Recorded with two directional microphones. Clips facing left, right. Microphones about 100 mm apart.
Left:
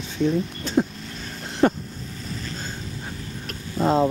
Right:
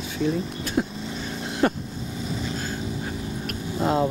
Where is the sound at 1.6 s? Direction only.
40° left (ahead or behind).